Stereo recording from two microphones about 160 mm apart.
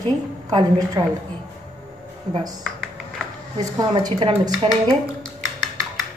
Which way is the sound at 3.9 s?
30° right (ahead or behind).